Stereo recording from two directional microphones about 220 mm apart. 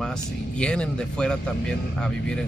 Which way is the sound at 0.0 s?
5° left (ahead or behind).